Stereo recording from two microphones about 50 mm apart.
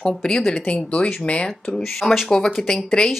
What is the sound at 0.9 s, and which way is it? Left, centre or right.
Speech, left.